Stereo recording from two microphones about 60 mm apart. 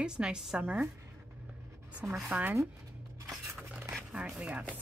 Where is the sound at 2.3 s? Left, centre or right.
Right.